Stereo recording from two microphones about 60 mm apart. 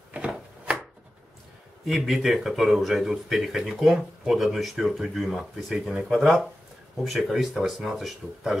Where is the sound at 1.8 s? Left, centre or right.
Centre.